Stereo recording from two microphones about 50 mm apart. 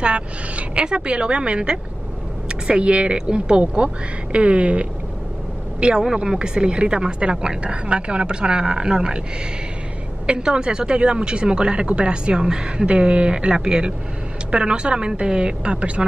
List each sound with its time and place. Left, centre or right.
0.0 s a woman's voice: right
10.2 s a woman's voice: centre